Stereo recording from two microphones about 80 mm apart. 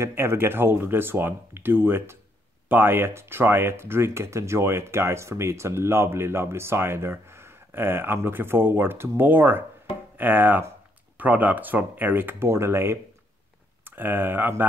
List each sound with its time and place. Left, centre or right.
0.0 s speech: right